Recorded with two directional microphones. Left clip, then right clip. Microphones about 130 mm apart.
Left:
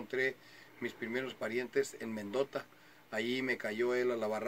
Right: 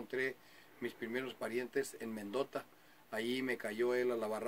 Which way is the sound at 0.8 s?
20° right (ahead or behind).